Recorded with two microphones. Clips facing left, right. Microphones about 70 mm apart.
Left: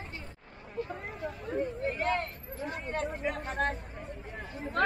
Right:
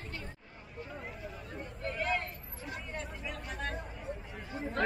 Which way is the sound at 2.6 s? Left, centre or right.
Left.